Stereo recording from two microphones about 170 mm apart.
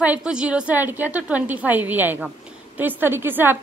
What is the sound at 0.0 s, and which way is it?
A woman's voice, 5° right (ahead or behind).